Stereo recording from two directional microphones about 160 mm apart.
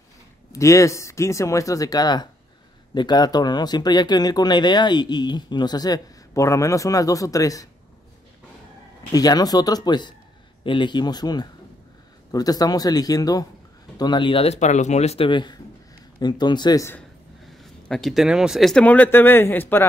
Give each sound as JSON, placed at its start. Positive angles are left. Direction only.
{"t": 0.5, "sound": "speech", "side_deg": 20}
{"t": 9.1, "sound": "speech", "side_deg": 25}
{"t": 17.8, "sound": "speech", "side_deg": 5}